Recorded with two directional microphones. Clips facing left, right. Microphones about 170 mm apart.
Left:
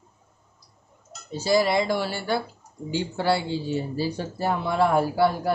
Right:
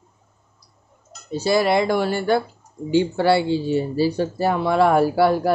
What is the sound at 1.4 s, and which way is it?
Speech, 65° right (ahead or behind).